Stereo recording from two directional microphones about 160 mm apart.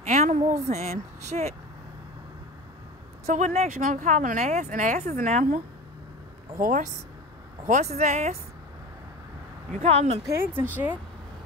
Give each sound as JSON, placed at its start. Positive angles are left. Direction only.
{"t": 0.0, "sound": "speech", "side_deg": -45}
{"t": 3.3, "sound": "speech", "side_deg": -45}
{"t": 6.6, "sound": "speech", "side_deg": -50}
{"t": 9.8, "sound": "speech", "side_deg": -40}
{"t": 10.3, "sound": "speech", "side_deg": -15}